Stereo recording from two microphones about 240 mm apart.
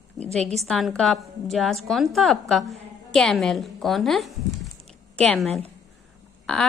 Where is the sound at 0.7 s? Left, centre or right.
Centre.